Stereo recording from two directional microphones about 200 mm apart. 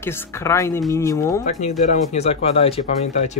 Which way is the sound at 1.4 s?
35° left (ahead or behind).